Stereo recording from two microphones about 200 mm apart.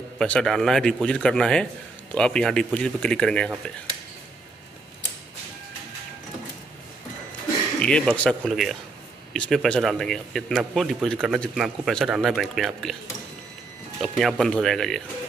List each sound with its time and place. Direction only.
0.2 s a man's voice: 5° left (ahead or behind)
7.8 s a man's voice: 5° left (ahead or behind)
14.0 s a man's voice: centre (ahead or behind)